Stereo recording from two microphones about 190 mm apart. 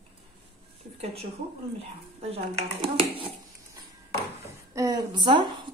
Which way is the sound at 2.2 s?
30° right (ahead or behind).